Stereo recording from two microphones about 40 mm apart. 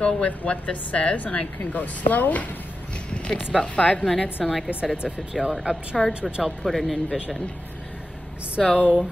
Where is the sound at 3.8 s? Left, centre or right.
Left.